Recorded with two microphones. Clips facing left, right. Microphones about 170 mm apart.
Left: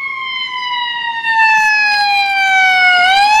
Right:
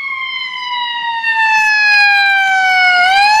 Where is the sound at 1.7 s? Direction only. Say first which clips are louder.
Left 2 dB; 55° left (ahead or behind).